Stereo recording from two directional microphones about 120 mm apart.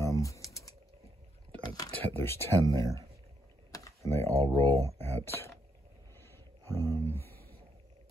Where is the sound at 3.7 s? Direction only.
25° left (ahead or behind).